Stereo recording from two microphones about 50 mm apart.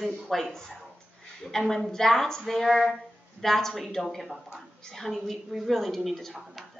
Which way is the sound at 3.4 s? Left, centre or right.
Centre.